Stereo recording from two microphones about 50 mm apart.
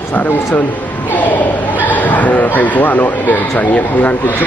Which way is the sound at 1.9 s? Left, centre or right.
Left.